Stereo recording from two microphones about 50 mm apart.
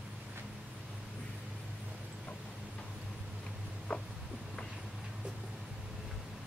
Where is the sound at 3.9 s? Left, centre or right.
Left.